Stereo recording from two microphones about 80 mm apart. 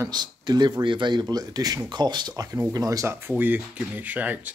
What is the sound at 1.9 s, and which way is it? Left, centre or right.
Speech, right.